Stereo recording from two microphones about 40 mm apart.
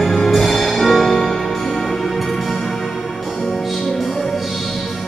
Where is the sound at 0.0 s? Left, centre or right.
Centre.